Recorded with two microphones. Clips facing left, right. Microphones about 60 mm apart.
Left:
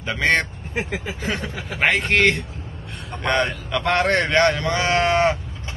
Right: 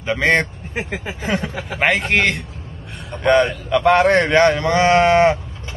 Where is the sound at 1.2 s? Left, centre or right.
Centre.